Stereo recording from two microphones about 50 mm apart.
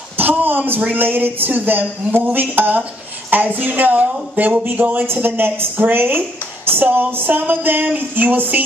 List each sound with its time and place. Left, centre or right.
0.2 s speech: right
5.0 s a woman's voice: right